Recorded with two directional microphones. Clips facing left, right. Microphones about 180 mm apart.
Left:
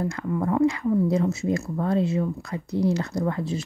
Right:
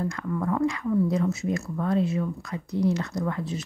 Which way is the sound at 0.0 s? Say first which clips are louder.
Left 2 dB; 25° left (ahead or behind).